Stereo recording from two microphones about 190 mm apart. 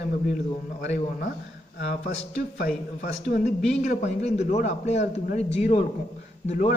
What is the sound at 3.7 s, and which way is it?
A man's voice, 40° left (ahead or behind).